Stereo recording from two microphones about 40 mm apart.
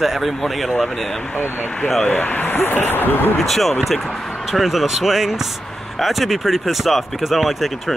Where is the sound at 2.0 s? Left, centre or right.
Left.